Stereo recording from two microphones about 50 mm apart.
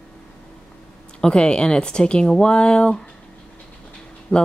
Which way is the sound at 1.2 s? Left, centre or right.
Centre.